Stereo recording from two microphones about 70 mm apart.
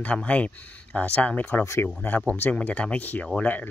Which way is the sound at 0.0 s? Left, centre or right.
Centre.